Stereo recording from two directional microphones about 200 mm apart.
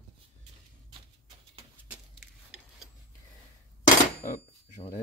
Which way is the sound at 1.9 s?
Centre (ahead or behind).